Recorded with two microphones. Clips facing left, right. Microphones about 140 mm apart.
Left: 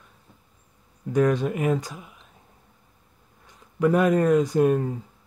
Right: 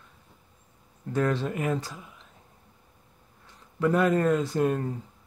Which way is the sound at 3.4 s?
15° left (ahead or behind).